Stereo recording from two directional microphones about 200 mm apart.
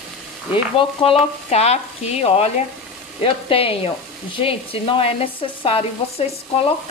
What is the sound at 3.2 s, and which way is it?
Speech, 30° left (ahead or behind).